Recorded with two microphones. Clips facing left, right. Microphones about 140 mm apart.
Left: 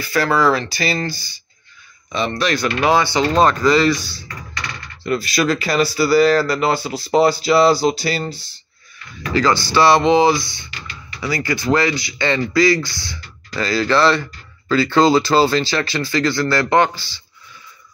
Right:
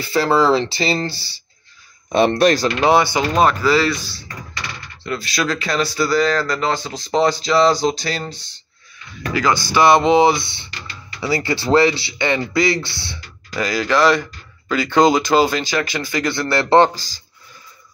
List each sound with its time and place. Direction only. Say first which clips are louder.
0.0 s speech: right 1 dB; 25° right (ahead or behind)
2.1 s speech: right 7 dB; 55° right (ahead or behind)
2.8 s speech: left 1 dB; 20° right (ahead or behind); by 8.5 s 5° left (ahead or behind)
9.3 s speech: left 2 dB; 15° right (ahead or behind)
13.5 s speech: left 1 dB; 15° right (ahead or behind); by 17.2 s 40° right (ahead or behind)